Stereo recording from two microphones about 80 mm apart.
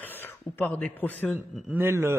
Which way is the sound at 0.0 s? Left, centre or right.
Left.